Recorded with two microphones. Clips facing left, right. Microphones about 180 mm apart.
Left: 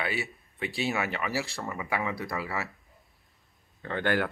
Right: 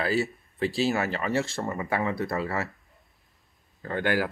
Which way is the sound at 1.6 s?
35° right (ahead or behind).